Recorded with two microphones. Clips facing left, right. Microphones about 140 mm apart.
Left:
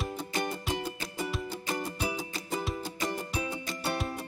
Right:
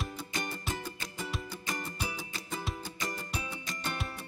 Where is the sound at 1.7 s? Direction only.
15° left (ahead or behind).